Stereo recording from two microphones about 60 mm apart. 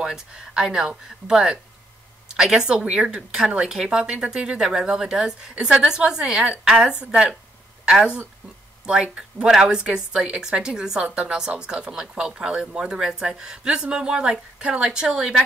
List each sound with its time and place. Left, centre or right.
0.0 s a woman's voice: centre